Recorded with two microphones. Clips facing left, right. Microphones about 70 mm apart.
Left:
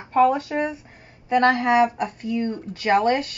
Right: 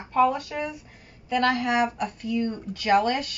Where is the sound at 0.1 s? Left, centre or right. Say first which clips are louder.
Left 4 dB; left.